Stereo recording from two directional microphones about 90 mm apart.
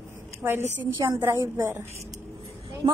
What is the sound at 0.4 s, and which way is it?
A woman's voice, 25° right (ahead or behind).